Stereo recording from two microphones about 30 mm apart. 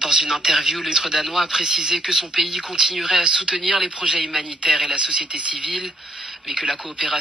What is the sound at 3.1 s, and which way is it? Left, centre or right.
A man's voice, right.